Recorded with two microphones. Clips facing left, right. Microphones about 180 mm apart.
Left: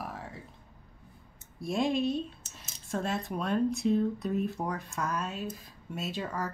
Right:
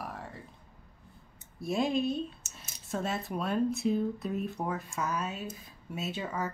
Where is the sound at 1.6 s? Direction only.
Centre (ahead or behind).